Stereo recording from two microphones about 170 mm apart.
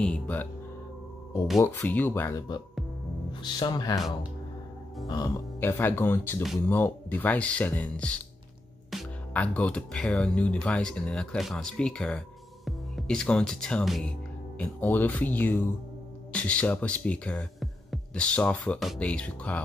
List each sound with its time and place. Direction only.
0.0 s speech: 10° left (ahead or behind)
1.6 s speech: 10° left (ahead or behind)
5.0 s speech: 25° left (ahead or behind)
5.6 s speech: 10° left (ahead or behind)